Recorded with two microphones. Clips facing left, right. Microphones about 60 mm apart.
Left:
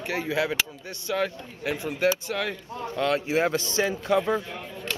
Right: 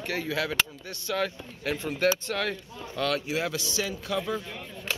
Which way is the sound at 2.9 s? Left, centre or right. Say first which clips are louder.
Left 4 dB; left.